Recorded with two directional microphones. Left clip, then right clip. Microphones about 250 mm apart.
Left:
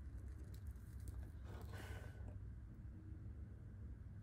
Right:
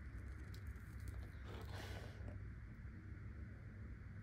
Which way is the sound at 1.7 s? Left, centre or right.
Right.